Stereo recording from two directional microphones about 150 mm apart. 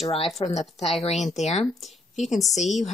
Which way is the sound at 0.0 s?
40° left (ahead or behind).